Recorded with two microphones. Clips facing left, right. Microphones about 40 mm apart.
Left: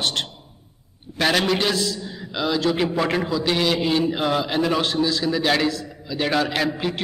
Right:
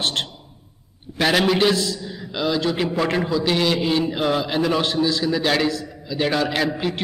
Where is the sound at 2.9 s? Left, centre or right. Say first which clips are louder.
Right 1 dB; centre.